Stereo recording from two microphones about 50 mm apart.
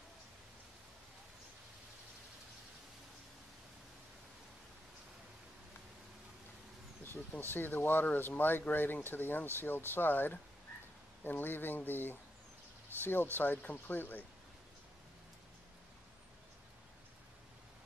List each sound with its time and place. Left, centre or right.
7.0 s vehicle: left
7.5 s speech: left